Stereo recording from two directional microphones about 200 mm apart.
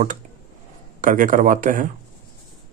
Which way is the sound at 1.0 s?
40° right (ahead or behind).